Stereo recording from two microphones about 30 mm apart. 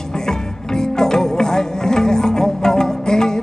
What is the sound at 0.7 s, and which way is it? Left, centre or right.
Music, centre.